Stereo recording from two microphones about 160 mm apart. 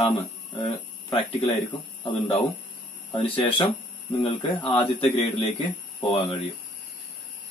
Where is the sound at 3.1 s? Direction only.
35° left (ahead or behind).